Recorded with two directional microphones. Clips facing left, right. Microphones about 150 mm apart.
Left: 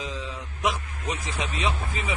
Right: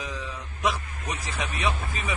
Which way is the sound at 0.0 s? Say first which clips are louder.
Left 1 dB; 20° left (ahead or behind).